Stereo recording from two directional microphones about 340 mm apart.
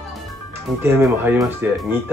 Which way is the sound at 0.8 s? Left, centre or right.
Centre.